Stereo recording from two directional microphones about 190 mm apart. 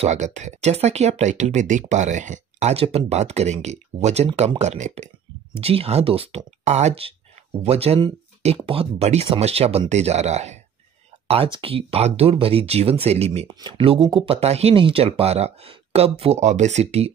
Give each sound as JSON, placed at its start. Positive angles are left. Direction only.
{"t": 0.0, "sound": "speech", "side_deg": -40}